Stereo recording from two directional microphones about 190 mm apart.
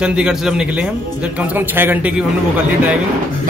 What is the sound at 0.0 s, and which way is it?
A man's voice, 5° right (ahead or behind).